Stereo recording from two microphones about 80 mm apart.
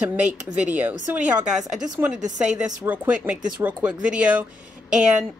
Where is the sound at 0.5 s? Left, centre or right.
Right.